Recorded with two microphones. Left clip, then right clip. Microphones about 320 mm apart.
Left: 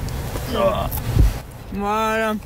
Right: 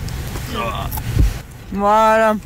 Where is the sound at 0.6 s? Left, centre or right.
Centre.